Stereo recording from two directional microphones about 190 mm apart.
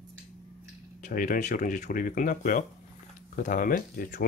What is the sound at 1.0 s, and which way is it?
Speech, 45° left (ahead or behind).